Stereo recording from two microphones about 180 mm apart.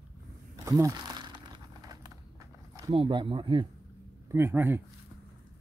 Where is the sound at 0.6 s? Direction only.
15° right (ahead or behind).